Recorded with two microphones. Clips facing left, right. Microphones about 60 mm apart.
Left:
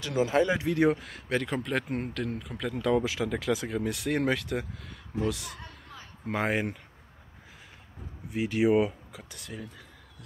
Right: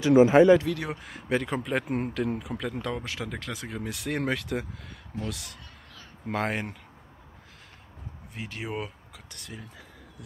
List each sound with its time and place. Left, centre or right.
0.0 s speech: right
0.7 s speech: left
0.9 s speech: centre
8.3 s speech: centre